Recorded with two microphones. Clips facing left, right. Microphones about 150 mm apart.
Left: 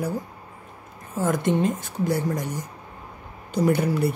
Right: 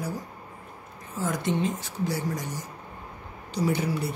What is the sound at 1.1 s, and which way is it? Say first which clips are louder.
Speech: left 5 dB; 50° left (ahead or behind).